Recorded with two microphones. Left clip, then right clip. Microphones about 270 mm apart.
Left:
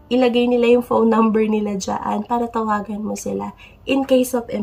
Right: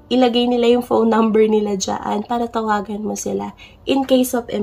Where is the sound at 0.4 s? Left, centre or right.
Left.